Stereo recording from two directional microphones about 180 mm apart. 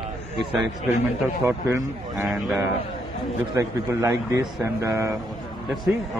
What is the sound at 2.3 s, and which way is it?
Speech, centre (ahead or behind).